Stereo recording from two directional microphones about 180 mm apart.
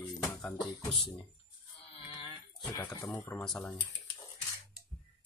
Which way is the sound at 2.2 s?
25° left (ahead or behind).